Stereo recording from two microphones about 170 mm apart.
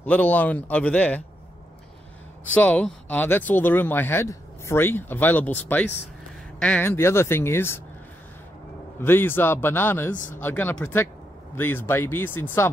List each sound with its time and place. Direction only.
0.0 s speech: 10° left (ahead or behind)
2.4 s speech: 10° left (ahead or behind)
9.0 s speech: 15° left (ahead or behind)
10.1 s speech: 50° left (ahead or behind)
10.4 s speech: 10° left (ahead or behind)